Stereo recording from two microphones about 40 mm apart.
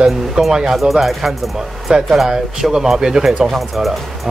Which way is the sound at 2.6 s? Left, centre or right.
Centre.